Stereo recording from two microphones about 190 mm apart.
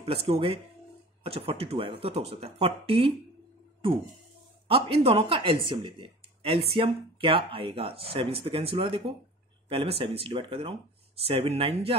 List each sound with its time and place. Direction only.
0.0 s speech: 30° right (ahead or behind)